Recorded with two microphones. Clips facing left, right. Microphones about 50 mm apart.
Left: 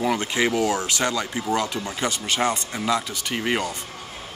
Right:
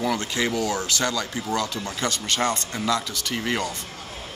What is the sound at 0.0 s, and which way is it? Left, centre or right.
Speech, centre.